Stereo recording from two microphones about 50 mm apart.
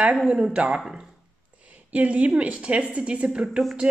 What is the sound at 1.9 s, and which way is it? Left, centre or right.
A woman's voice, right.